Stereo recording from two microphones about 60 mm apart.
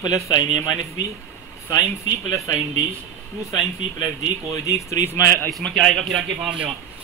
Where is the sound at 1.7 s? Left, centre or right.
Left.